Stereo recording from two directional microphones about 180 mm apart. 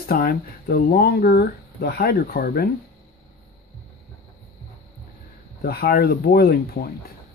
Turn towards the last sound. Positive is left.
turn(degrees=55)  # may be behind; listen again after turning